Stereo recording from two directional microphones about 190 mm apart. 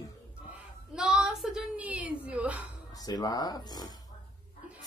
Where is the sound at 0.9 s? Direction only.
5° right (ahead or behind).